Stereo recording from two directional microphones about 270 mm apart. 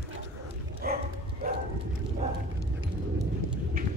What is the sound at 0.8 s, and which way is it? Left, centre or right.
Dog, right.